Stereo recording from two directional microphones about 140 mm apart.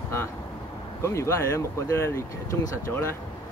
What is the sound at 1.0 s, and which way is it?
Speech, 20° left (ahead or behind).